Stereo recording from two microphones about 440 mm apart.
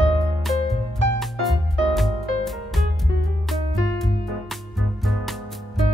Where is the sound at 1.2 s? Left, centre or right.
Centre.